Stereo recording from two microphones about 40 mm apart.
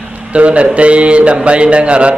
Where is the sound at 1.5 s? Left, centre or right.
Right.